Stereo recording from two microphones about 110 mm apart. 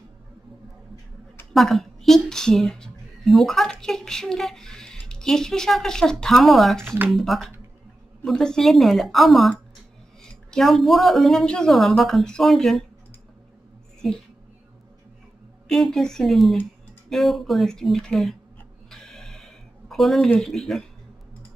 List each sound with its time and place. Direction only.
1.5 s speech: centre (ahead or behind)
14.0 s a woman's voice: centre (ahead or behind)
15.7 s speech: 5° left (ahead or behind)
18.9 s a sound: 5° left (ahead or behind)
20.3 s speech: 5° left (ahead or behind)